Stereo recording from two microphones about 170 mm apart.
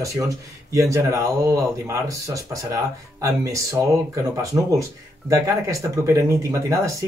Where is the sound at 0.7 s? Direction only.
20° right (ahead or behind).